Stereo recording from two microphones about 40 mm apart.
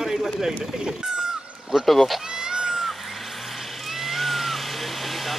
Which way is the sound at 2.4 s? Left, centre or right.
Centre.